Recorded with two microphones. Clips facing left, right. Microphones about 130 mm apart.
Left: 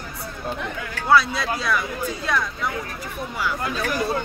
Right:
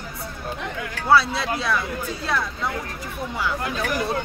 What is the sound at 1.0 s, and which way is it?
Speech, 25° right (ahead or behind).